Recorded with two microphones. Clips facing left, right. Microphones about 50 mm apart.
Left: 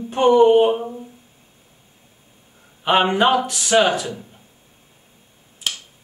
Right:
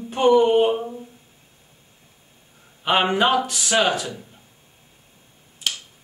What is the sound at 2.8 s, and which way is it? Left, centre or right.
Speech, centre.